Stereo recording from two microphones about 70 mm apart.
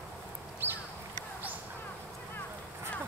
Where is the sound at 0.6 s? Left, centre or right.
Right.